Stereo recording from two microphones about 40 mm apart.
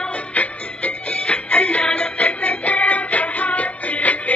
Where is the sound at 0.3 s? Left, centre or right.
Left.